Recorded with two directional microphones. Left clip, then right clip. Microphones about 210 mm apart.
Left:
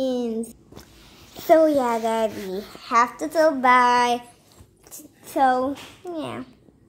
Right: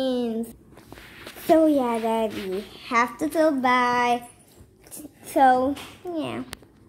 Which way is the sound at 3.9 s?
30° left (ahead or behind).